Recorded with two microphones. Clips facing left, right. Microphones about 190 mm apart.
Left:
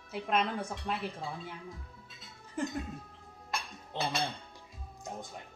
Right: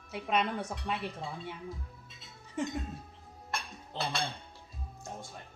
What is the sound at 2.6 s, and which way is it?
Speech, centre (ahead or behind).